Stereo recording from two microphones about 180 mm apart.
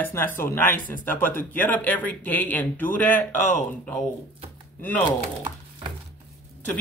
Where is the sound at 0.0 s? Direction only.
10° left (ahead or behind).